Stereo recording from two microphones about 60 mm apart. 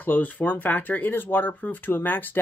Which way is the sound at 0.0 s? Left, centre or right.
Left.